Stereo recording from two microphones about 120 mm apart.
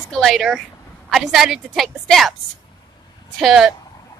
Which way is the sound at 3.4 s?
Centre (ahead or behind).